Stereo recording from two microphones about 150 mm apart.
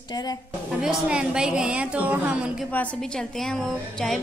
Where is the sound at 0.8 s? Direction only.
5° right (ahead or behind).